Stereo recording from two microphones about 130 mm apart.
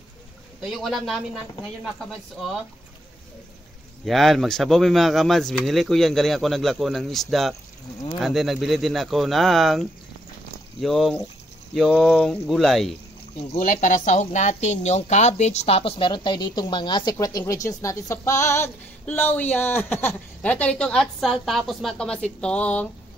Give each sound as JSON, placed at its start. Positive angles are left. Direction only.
{"t": 0.7, "sound": "a man's voice", "side_deg": 0}
{"t": 4.0, "sound": "a man's voice", "side_deg": 0}
{"t": 13.6, "sound": "a woman's voice", "side_deg": 75}